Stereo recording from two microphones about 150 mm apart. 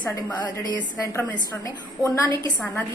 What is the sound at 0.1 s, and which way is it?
A woman's voice, 25° left (ahead or behind).